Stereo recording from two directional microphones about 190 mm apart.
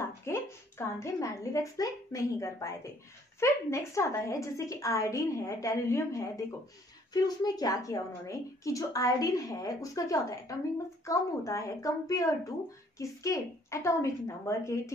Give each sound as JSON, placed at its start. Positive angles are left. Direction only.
{"t": 0.2, "sound": "a woman's voice", "side_deg": 15}